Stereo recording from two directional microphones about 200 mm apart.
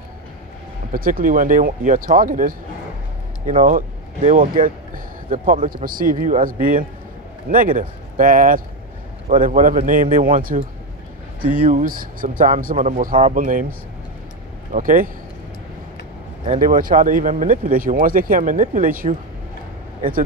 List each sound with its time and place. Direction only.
0.9 s speech: 45° right (ahead or behind)
14.7 s speech: 45° right (ahead or behind)
16.4 s speech: 40° right (ahead or behind)